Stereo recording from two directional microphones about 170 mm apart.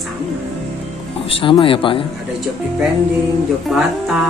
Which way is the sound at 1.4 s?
30° left (ahead or behind).